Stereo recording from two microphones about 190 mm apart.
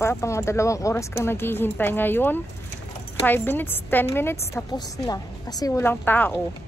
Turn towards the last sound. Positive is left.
turn(degrees=10)  # may be behind; listen again after turning